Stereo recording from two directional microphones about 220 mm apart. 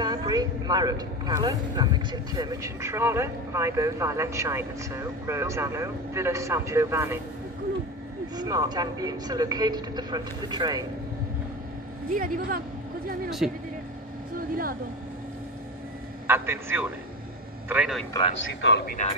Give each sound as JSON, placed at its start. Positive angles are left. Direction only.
{"t": 0.0, "sound": "speech", "side_deg": -20}
{"t": 8.4, "sound": "speech", "side_deg": -15}
{"t": 12.1, "sound": "speech", "side_deg": -40}
{"t": 13.4, "sound": "a man's voice", "side_deg": 0}
{"t": 14.3, "sound": "vehicle", "side_deg": -40}
{"t": 16.3, "sound": "a man's voice", "side_deg": -10}
{"t": 18.1, "sound": "speech", "side_deg": 25}
{"t": 18.4, "sound": "speech", "side_deg": 60}
{"t": 19.0, "sound": "speech", "side_deg": 35}